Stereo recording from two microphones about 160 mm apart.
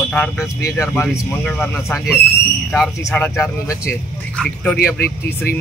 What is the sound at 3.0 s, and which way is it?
Speech, 15° left (ahead or behind).